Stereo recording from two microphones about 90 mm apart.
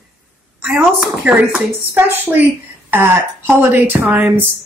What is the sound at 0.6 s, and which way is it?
Speech, 10° right (ahead or behind).